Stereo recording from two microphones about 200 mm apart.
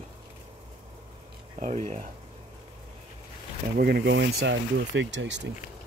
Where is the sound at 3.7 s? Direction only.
50° right (ahead or behind).